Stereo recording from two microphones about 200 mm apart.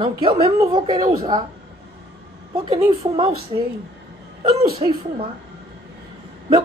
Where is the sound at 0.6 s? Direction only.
20° right (ahead or behind).